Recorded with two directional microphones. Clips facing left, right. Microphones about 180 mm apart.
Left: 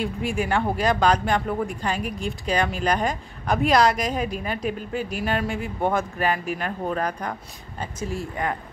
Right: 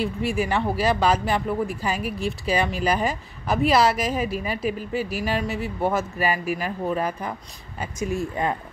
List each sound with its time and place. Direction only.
0.0 s speech: centre (ahead or behind)
7.8 s speech: 15° right (ahead or behind)